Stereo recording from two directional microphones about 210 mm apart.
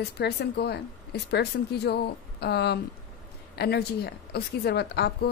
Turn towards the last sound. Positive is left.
turn(degrees=50)  # may be behind; listen again after turning